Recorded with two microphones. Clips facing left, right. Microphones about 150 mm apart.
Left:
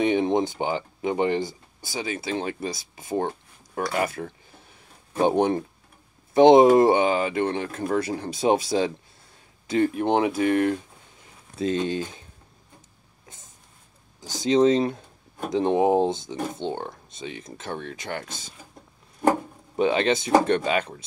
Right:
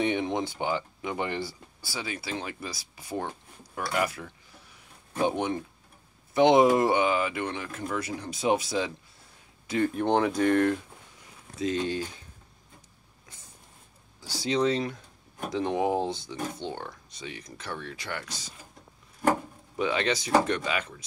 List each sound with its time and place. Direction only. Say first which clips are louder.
0.0 s speech: left 6 dB; 25° left (ahead or behind)
3.2 s a sound: left 7 dB; 45° left (ahead or behind)
3.8 s speech: left 3 dB; 25° left (ahead or behind)
5.2 s speech: left 7 dB; 35° left (ahead or behind)
9.9 s speech: left 2 dB; 15° left (ahead or behind)
11.5 s speech: left 4 dB; 25° left (ahead or behind)
14.4 s speech: left 7 dB; 20° left (ahead or behind)
18.0 s speech: left 4 dB; 45° left (ahead or behind)
19.8 s speech: left 6 dB; 25° left (ahead or behind)